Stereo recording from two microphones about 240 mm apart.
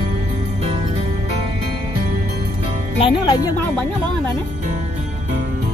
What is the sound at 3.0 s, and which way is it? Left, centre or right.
Speech, centre.